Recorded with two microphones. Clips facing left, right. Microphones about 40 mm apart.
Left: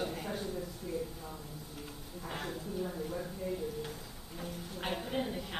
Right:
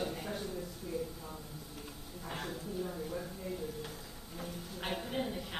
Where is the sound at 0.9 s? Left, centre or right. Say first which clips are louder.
Left 1 dB; left.